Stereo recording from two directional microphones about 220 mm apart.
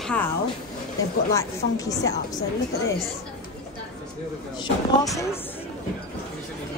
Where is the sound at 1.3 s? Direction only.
15° left (ahead or behind).